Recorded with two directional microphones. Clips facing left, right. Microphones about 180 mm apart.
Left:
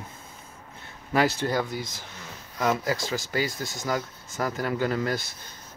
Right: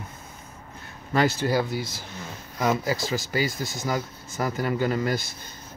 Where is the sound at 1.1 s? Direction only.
Centre (ahead or behind).